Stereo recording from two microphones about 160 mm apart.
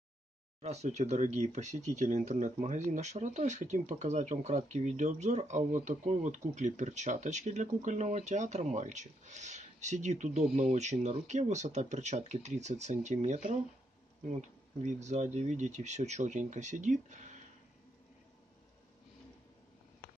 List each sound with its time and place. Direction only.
0.6 s speech: 45° right (ahead or behind)
15.0 s speech: 45° right (ahead or behind)